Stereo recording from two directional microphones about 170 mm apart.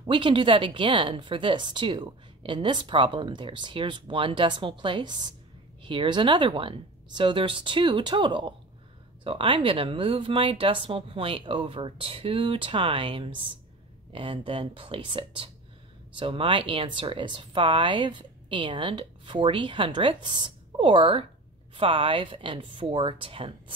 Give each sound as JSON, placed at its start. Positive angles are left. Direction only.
{"t": 0.0, "sound": "a woman's voice", "side_deg": -30}